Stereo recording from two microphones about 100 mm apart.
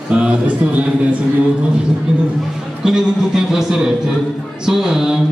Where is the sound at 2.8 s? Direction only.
5° right (ahead or behind).